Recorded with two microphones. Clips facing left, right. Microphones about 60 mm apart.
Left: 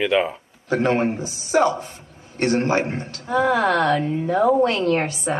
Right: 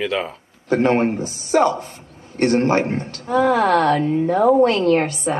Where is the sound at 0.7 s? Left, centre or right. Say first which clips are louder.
Right 3 dB; right.